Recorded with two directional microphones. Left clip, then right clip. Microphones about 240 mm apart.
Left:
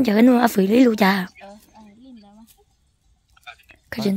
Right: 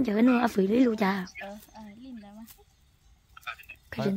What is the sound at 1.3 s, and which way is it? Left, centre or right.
Speech, centre.